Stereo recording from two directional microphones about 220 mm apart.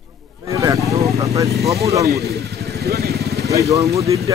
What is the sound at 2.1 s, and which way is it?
Vehicle, 45° right (ahead or behind).